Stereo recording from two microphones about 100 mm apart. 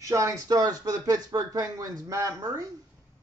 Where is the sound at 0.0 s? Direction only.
30° right (ahead or behind).